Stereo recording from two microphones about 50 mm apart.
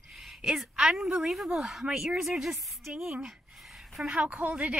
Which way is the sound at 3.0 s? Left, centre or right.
Centre.